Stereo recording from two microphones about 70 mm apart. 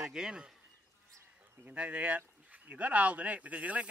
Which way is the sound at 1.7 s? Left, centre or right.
Centre.